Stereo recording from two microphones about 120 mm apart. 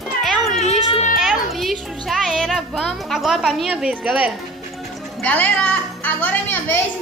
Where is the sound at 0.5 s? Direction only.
65° left (ahead or behind).